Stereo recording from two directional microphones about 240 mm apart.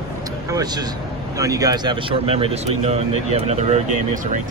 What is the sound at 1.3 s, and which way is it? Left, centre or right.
Speech, centre.